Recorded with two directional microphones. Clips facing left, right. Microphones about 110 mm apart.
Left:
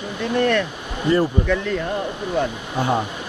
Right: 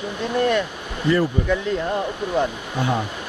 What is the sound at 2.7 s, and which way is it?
Speech, 20° left (ahead or behind).